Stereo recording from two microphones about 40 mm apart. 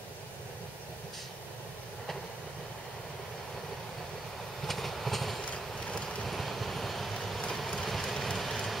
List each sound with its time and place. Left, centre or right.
4.6 s vehicle: centre
5.4 s vehicle: left
6.2 s vehicle: centre
7.5 s train: centre